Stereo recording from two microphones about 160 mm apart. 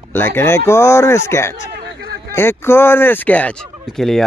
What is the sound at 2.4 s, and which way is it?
Speech, 15° left (ahead or behind).